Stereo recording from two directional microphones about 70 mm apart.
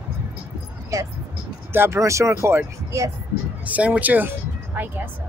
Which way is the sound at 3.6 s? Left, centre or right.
Right.